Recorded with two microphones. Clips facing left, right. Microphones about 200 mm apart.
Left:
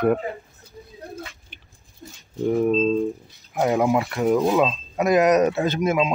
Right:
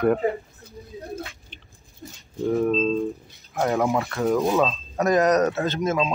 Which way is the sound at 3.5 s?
15° left (ahead or behind).